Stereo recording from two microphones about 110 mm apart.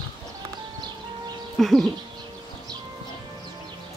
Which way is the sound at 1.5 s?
Centre (ahead or behind).